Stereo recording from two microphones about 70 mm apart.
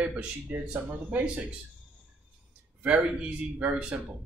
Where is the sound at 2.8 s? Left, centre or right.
Centre.